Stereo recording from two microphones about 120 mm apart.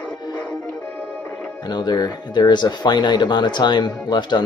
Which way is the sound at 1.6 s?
35° left (ahead or behind).